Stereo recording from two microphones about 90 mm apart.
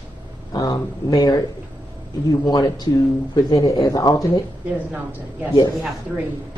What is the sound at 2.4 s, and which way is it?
Speech, 50° left (ahead or behind).